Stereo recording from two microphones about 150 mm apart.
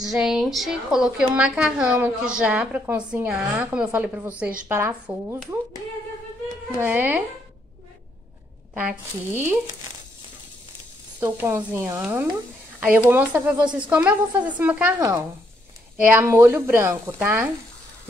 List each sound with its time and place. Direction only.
0.0 s a woman's voice: 5° right (ahead or behind)
6.7 s a woman's voice: 10° right (ahead or behind)
8.7 s a woman's voice: 15° right (ahead or behind)
11.1 s a woman's voice: 15° right (ahead or behind)
15.0 s a woman's voice: 20° right (ahead or behind)